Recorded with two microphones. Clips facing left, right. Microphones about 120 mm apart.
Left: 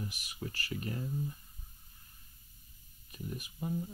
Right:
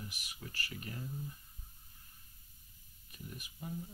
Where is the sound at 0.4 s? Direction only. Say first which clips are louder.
Left 7 dB; 35° left (ahead or behind).